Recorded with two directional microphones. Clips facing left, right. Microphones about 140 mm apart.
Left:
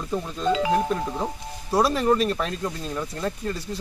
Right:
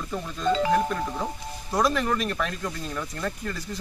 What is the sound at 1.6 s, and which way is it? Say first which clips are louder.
Speech: left 4 dB; 30° left (ahead or behind).